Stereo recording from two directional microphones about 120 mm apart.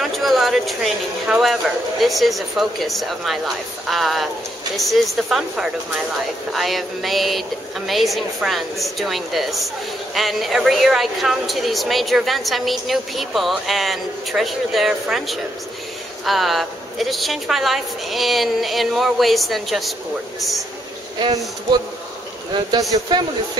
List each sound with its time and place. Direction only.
0.0 s a woman's voice: centre (ahead or behind)
21.2 s a man's voice: 35° right (ahead or behind)
22.5 s a man's voice: 40° right (ahead or behind)